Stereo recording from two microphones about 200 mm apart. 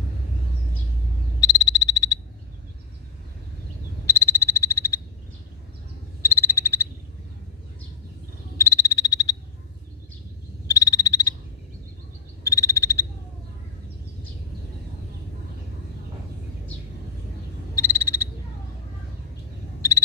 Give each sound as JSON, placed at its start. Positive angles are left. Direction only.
{"t": 1.4, "sound": "frog", "side_deg": 20}
{"t": 4.0, "sound": "frog", "side_deg": 15}
{"t": 6.2, "sound": "frog", "side_deg": 15}
{"t": 8.5, "sound": "frog", "side_deg": 15}
{"t": 10.7, "sound": "frog", "side_deg": 15}
{"t": 12.4, "sound": "frog", "side_deg": 15}
{"t": 17.7, "sound": "frog", "side_deg": 15}